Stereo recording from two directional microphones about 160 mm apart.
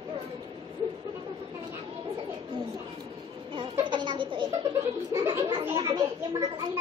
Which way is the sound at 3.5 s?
30° right (ahead or behind).